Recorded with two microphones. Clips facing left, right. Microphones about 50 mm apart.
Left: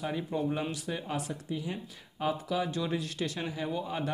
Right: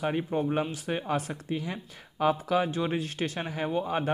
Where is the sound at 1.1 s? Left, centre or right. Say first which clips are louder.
Right 5 dB; right.